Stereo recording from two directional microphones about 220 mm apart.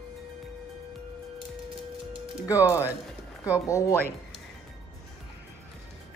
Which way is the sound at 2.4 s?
15° left (ahead or behind).